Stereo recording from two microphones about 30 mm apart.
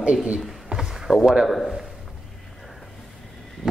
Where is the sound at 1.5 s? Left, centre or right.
Centre.